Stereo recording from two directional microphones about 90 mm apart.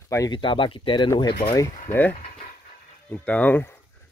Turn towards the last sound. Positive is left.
turn(degrees=15)  # may be behind; listen again after turning